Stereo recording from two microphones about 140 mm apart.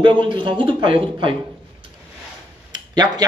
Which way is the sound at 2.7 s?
30° right (ahead or behind).